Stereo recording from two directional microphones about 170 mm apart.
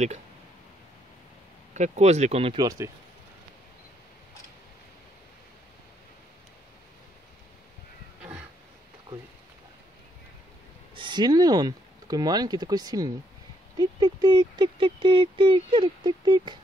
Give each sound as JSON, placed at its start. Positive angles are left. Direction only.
{"t": 1.7, "sound": "speech", "side_deg": -40}
{"t": 8.2, "sound": "a sound", "side_deg": -10}
{"t": 11.0, "sound": "speech", "side_deg": -25}